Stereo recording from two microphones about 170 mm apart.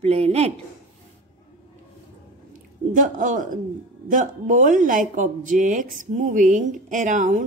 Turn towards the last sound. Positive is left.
turn(degrees=-45)  # may be behind; listen again after turning